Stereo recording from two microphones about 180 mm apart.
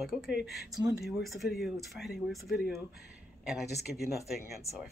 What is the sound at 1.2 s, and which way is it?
Speech, centre (ahead or behind).